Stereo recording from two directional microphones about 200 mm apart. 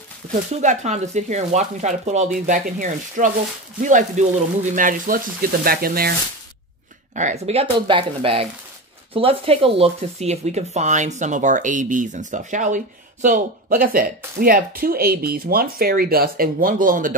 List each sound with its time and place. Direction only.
0.3 s speech: 35° right (ahead or behind)
7.2 s speech: 35° right (ahead or behind)